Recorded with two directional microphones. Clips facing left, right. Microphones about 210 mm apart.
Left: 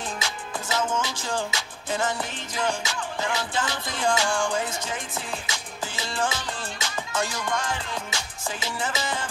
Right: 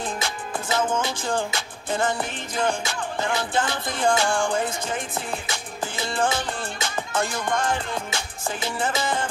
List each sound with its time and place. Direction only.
0.2 s music: 55° right (ahead or behind)